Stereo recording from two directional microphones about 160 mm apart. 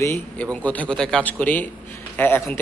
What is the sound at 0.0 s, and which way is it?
A man's voice, 10° left (ahead or behind).